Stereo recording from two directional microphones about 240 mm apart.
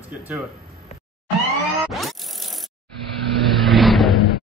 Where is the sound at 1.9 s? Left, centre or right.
Centre.